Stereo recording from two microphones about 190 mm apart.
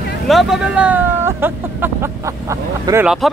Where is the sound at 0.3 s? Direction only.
Centre (ahead or behind).